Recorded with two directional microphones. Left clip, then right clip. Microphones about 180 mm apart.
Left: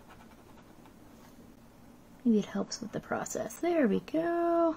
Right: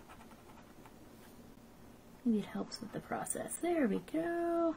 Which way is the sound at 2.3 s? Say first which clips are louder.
Left 9 dB; 30° left (ahead or behind).